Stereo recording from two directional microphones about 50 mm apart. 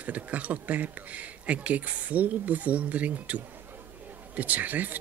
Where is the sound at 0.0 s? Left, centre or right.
Right.